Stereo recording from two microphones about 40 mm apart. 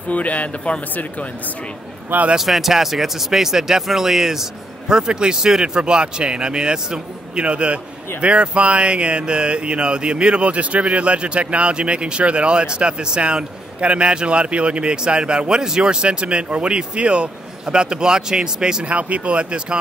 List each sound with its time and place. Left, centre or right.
0.1 s speech: left
2.3 s speech: centre
18.9 s speech: right